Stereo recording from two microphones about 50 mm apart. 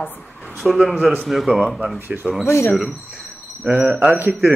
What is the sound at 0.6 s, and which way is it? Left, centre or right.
Speech, centre.